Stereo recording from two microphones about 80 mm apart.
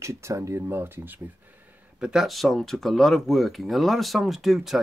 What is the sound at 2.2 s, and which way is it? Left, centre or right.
Speech, centre.